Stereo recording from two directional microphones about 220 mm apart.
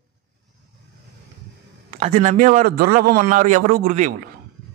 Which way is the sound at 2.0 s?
30° right (ahead or behind).